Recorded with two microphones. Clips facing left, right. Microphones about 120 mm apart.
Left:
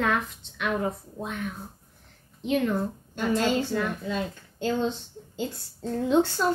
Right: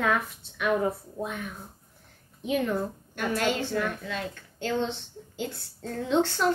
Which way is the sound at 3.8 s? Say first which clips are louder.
Left 2 dB; 15° left (ahead or behind).